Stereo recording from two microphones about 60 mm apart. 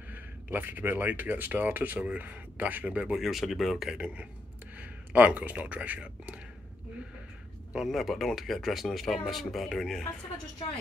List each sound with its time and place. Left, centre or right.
0.1 s speech: right
3.2 s speech: centre
3.9 s speech: right
7.9 s speech: centre